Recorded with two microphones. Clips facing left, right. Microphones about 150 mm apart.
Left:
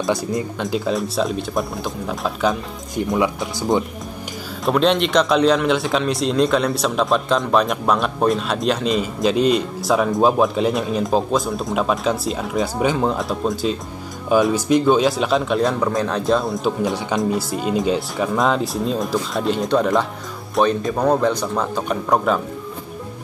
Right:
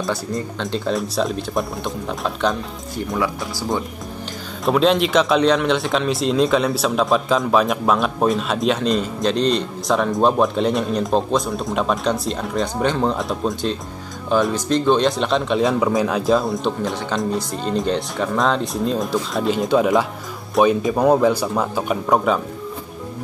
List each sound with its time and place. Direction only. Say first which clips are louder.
0.0 s speech: left 3 dB; 15° left (ahead or behind)
0.7 s speech: even; 5° left (ahead or behind)
3.0 s speech: left 3 dB; 20° left (ahead or behind)
4.6 s speech: right 1 dB; centre (ahead or behind)